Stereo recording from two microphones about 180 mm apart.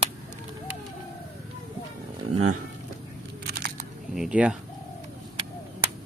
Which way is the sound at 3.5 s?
65° right (ahead or behind).